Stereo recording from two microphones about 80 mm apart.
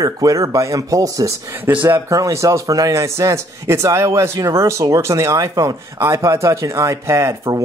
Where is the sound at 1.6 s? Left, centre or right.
Right.